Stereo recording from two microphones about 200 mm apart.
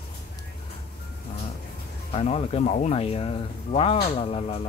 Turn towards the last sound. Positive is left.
turn(degrees=30)  # may be behind; listen again after turning